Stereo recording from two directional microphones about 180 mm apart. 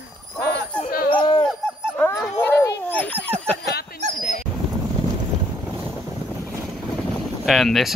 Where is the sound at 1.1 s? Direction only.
25° left (ahead or behind).